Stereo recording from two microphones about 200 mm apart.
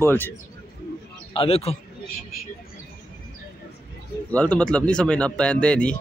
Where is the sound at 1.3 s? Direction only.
30° left (ahead or behind).